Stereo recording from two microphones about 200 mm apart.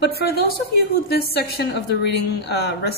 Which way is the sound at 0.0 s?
50° left (ahead or behind).